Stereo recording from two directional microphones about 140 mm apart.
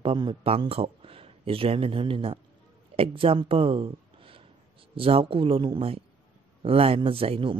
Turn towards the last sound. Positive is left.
turn(degrees=-40)  # may be behind; listen again after turning